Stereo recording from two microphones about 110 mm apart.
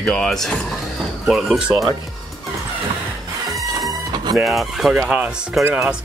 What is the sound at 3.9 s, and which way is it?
Music, 40° right (ahead or behind).